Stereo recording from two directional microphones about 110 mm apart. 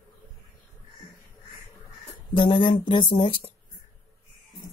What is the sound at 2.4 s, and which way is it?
Speech, 45° left (ahead or behind).